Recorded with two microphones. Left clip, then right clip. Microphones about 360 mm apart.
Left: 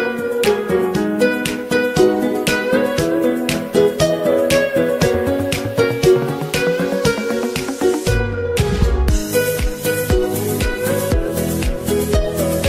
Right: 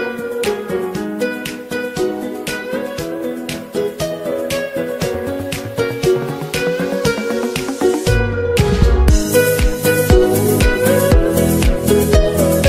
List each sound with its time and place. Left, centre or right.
0.5 s music: left
3.7 s music: left
5.8 s music: left
8.5 s music: right
9.3 s music: right
11.9 s music: right